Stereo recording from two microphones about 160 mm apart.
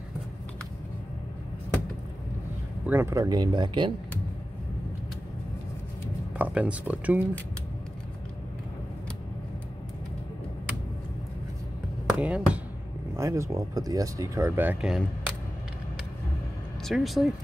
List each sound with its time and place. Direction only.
2.9 s speech: 15° right (ahead or behind)
6.3 s speech: 10° right (ahead or behind)
12.1 s basketball bounce: 5° right (ahead or behind)
13.1 s speech: 15° right (ahead or behind)
16.8 s speech: centre (ahead or behind)